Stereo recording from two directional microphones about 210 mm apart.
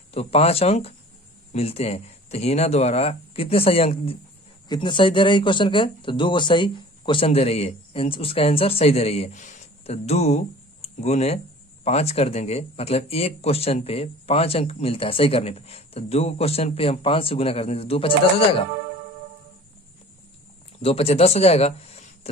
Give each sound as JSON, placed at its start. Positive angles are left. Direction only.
{"t": 0.1, "sound": "speech", "side_deg": 30}
{"t": 20.8, "sound": "speech", "side_deg": 30}